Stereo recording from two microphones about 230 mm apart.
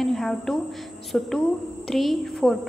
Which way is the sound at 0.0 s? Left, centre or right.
Centre.